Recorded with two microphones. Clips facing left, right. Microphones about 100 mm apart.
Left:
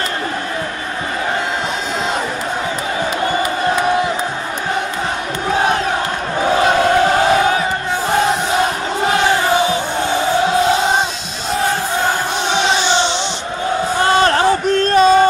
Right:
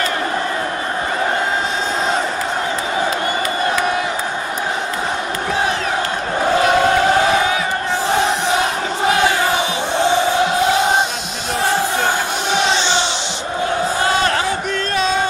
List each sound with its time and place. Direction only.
14.2 s music: 40° left (ahead or behind)